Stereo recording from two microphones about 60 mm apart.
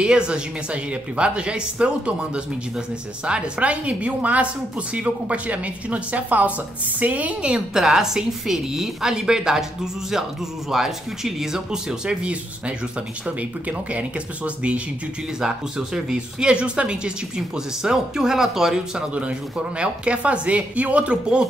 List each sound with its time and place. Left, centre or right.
0.0 s a woman's voice: centre
7.5 s speech: centre
10.7 s a woman's voice: centre
19.1 s a woman's voice: centre